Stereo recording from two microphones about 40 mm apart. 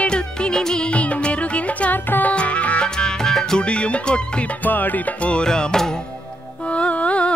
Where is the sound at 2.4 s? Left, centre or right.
Left.